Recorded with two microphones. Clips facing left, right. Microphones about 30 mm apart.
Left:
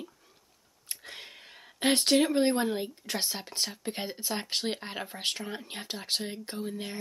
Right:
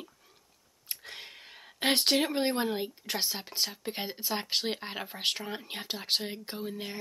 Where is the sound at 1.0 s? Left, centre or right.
Centre.